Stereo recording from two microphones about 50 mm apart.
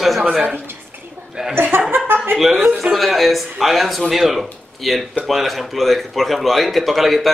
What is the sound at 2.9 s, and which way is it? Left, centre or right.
A man's voice, centre.